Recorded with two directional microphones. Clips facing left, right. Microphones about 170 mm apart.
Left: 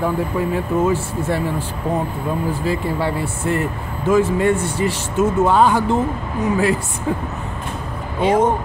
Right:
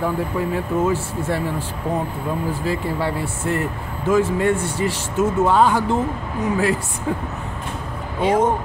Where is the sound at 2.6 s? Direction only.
20° left (ahead or behind).